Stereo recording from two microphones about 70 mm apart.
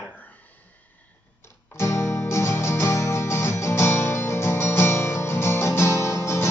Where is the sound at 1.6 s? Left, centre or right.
Left.